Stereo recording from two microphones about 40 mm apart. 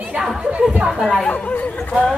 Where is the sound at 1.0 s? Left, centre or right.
Centre.